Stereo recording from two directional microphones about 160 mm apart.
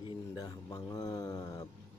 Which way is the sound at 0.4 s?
25° left (ahead or behind).